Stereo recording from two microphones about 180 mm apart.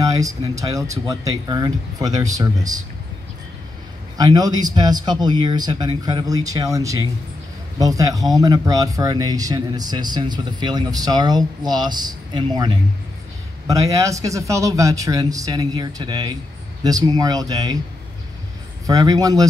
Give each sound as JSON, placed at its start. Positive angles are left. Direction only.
{"t": 0.0, "sound": "speech", "side_deg": -20}
{"t": 4.2, "sound": "speech", "side_deg": -20}
{"t": 18.9, "sound": "speech", "side_deg": -20}